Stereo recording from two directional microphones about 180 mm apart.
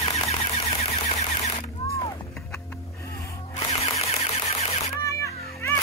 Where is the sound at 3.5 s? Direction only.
35° left (ahead or behind).